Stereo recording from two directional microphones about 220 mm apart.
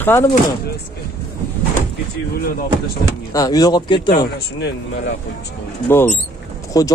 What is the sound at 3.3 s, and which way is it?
Speech, 15° left (ahead or behind).